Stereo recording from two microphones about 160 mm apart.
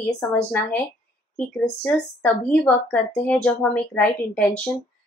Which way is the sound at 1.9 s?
5° left (ahead or behind).